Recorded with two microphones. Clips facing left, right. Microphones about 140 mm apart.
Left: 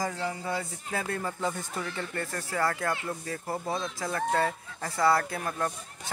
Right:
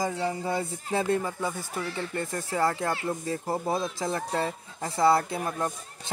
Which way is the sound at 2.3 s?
20° right (ahead or behind).